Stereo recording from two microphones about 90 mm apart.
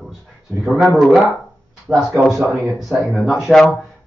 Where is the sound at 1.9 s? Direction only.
20° right (ahead or behind).